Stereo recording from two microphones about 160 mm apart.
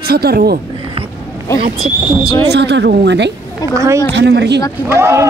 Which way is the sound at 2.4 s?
90° right.